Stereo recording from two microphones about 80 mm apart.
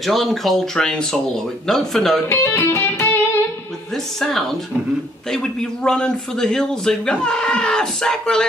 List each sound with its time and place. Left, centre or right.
0.0 s speech: centre
2.2 s music: left
3.9 s a man's voice: centre